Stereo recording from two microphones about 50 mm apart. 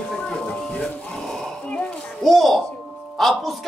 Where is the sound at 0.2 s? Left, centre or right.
Centre.